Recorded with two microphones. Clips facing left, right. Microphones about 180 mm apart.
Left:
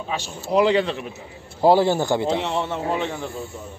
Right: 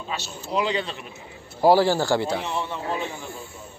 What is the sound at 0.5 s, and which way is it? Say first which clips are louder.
Speech: left 7 dB; 50° left (ahead or behind).